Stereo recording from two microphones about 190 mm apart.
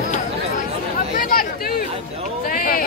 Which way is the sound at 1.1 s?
45° left (ahead or behind).